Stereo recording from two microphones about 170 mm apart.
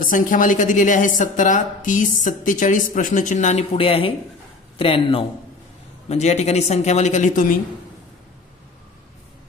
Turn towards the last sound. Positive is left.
turn(degrees=50)  # may be behind; listen again after turning